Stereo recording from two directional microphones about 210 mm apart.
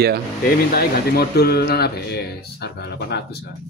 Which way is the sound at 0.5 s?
50° left (ahead or behind).